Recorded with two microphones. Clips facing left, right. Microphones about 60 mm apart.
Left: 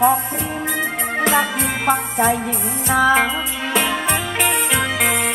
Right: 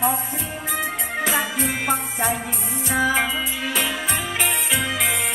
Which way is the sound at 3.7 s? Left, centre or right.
Left.